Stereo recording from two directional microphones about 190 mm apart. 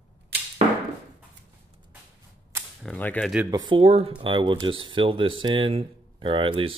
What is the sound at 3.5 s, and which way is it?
Speech, 20° right (ahead or behind).